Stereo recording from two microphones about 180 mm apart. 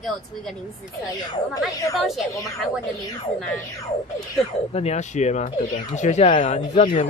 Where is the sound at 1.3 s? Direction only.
20° left (ahead or behind).